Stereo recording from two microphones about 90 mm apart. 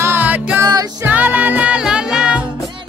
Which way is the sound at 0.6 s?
40° right (ahead or behind).